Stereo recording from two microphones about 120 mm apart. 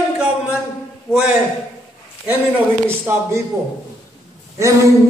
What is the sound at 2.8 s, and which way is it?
Speech, 20° right (ahead or behind).